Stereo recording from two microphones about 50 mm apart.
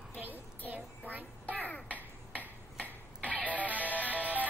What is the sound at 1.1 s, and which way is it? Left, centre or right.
Music, right.